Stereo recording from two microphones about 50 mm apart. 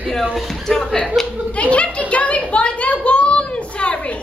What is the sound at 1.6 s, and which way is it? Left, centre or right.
Speech, left.